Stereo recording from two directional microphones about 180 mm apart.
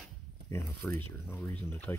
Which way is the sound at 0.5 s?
10° left (ahead or behind).